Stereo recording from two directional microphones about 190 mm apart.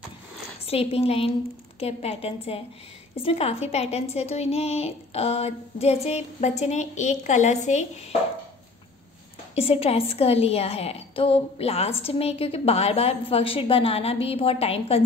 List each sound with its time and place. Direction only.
0.7 s a woman's voice: 30° left (ahead or behind)
9.6 s a woman's voice: 30° left (ahead or behind)